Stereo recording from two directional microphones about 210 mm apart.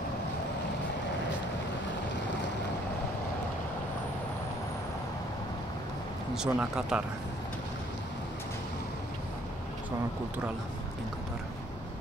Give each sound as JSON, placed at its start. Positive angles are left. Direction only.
{"t": 6.3, "sound": "speech", "side_deg": -5}